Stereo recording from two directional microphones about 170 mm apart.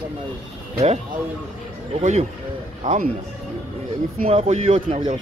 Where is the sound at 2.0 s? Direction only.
40° right (ahead or behind).